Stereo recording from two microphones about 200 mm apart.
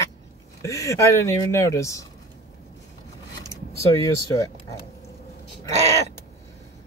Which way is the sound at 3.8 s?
15° left (ahead or behind).